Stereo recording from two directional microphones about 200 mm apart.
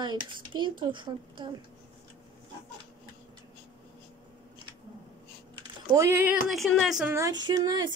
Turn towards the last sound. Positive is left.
turn(degrees=-20)  # may be behind; listen again after turning